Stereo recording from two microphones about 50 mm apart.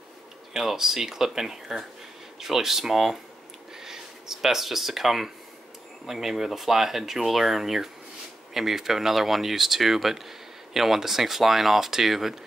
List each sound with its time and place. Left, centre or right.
0.5 s speech: centre